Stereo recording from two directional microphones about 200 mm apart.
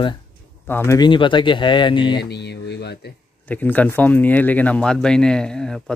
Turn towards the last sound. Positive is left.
turn(degrees=5)  # may be behind; listen again after turning